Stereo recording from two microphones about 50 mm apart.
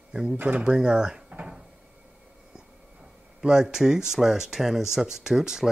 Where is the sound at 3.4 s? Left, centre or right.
Centre.